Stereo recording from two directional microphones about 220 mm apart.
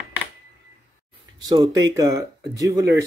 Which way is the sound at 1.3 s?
20° right (ahead or behind).